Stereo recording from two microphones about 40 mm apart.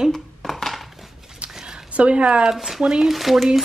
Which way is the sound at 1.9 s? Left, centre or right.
Right.